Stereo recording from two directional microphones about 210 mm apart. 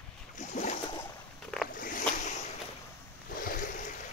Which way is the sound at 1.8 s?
40° left (ahead or behind).